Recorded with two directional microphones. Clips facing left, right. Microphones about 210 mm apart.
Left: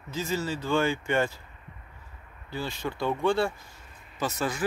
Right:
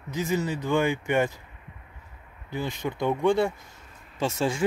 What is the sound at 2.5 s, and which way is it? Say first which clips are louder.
Speech: right 3 dB; 20° right (ahead or behind).